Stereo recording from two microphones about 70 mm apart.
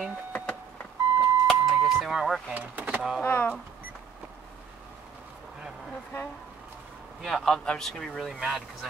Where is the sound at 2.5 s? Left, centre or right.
Right.